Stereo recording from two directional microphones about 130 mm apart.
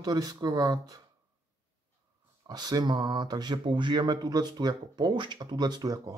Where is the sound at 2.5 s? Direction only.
30° right (ahead or behind).